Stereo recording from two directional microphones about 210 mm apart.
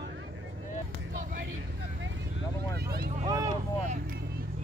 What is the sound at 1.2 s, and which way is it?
Vehicle, 45° right (ahead or behind).